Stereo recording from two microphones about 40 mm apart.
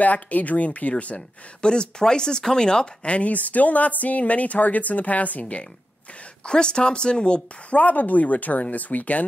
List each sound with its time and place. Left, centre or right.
0.0 s speech: left
1.6 s speech: left
6.4 s a woman's voice: left
7.8 s speech: left